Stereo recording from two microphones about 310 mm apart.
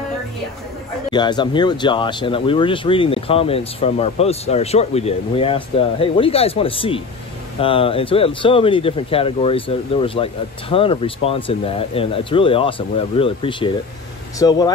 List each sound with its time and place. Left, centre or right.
1.1 s speech: centre